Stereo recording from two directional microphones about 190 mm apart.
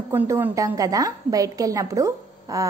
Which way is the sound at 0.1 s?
10° right (ahead or behind).